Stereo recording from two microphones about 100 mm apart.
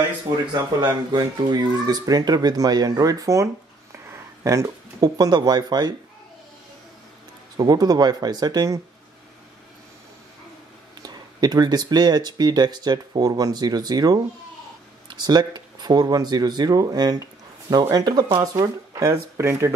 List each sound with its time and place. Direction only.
0.6 s speech: 45° right (ahead or behind)
7.5 s speech: 40° right (ahead or behind)
11.0 s speech: 45° right (ahead or behind)